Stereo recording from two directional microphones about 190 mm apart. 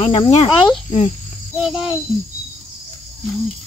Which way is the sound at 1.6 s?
Centre (ahead or behind).